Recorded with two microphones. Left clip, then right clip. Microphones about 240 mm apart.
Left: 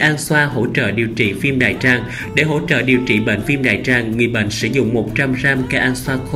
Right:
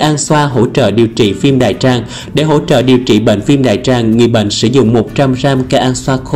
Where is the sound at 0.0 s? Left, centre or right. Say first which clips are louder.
Right 4 dB; centre.